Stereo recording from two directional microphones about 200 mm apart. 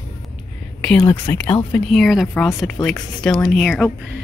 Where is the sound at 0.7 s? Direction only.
5° left (ahead or behind).